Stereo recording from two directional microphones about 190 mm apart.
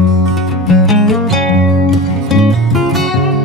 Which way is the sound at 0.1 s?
Centre (ahead or behind).